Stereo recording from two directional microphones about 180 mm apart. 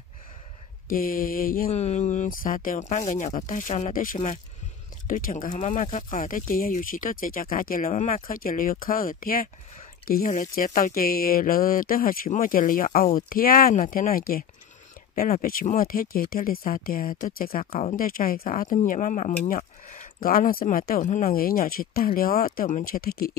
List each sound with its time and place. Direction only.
0.8 s speech: 50° left (ahead or behind)
1.7 s speech: 40° left (ahead or behind); by 23.3 s 55° left (ahead or behind)